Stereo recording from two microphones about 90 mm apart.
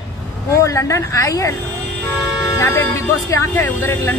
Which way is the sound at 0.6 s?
35° left (ahead or behind).